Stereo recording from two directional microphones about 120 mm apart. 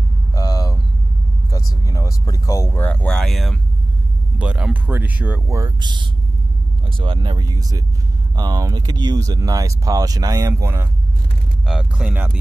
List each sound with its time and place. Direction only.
0.3 s vehicle: 30° left (ahead or behind)
1.5 s speech: 30° left (ahead or behind); by 5.4 s 15° right (ahead or behind)
5.8 s speech: 40° right (ahead or behind)
10.5 s speech: 20° right (ahead or behind)
11.6 s speech: 5° right (ahead or behind)